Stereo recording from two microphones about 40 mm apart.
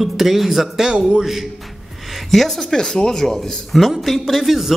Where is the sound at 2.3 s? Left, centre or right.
Centre.